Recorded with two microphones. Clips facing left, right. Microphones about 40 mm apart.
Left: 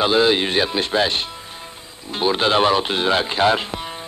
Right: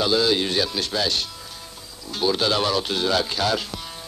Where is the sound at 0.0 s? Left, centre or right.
Left.